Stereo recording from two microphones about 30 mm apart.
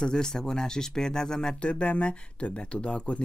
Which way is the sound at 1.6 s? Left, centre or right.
Left.